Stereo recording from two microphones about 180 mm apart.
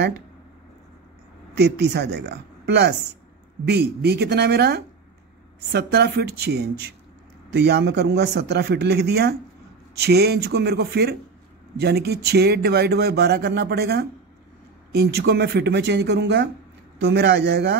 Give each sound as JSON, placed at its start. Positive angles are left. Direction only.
{"t": 1.6, "sound": "speech", "side_deg": -65}